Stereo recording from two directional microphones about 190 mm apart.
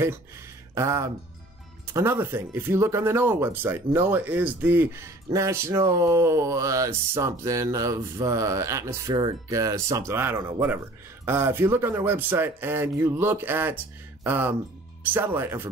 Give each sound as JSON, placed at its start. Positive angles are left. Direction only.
{"t": 0.7, "sound": "speech", "side_deg": -15}